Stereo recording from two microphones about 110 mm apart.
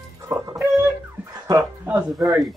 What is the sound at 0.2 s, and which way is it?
Music, 30° right (ahead or behind).